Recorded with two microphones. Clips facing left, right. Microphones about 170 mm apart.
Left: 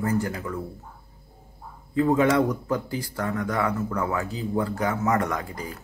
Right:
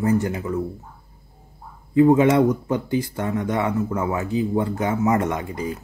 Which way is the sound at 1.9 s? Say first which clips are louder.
Right 5 dB; 20° right (ahead or behind).